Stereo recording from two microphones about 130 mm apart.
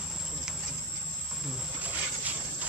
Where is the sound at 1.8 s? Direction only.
10° right (ahead or behind).